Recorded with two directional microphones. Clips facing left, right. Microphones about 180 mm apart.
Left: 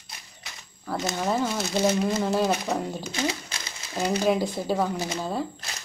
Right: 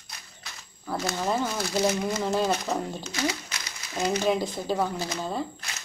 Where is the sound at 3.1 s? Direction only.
25° left (ahead or behind).